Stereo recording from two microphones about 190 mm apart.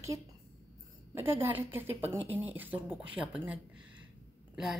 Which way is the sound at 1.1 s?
10° right (ahead or behind).